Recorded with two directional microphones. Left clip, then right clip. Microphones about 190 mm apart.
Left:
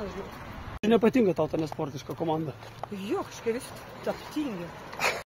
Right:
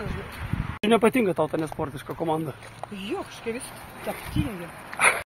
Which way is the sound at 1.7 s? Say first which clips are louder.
Right 3 dB; 25° right (ahead or behind).